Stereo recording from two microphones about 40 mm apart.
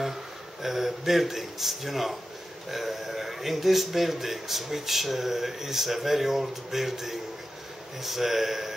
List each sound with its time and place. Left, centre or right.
0.0 s a man's voice: centre